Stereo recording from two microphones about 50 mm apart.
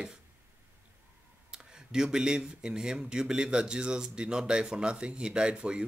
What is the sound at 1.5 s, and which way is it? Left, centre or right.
Speech, centre.